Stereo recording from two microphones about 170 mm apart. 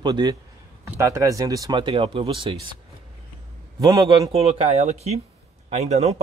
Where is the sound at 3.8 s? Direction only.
25° right (ahead or behind).